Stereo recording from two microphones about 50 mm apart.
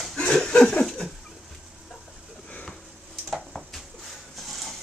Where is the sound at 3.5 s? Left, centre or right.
Centre.